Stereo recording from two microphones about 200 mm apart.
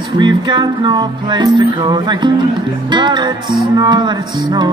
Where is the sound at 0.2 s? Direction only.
20° right (ahead or behind).